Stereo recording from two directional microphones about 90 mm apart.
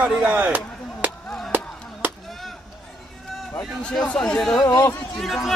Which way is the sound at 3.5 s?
10° left (ahead or behind).